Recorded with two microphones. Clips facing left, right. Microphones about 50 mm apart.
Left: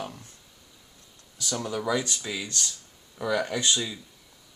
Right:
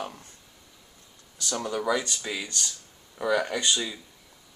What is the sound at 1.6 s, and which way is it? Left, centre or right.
Speech, centre.